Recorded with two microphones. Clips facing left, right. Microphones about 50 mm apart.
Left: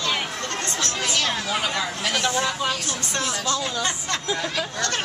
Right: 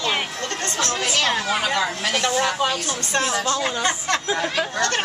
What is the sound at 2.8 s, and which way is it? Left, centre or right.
Speech, right.